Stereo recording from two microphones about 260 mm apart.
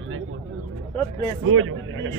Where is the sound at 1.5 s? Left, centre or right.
Right.